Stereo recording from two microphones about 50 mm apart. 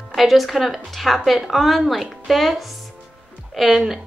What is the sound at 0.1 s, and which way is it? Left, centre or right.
A woman's voice, centre.